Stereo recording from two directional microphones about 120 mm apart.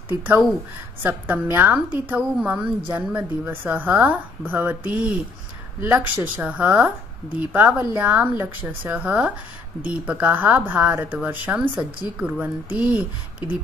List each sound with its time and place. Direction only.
1.0 s speech: 15° right (ahead or behind)
5.8 s speech: 20° right (ahead or behind)